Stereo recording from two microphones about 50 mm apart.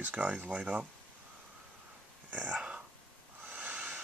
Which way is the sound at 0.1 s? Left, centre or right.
Right.